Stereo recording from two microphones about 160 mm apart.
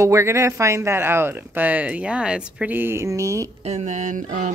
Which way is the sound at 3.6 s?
45° right (ahead or behind).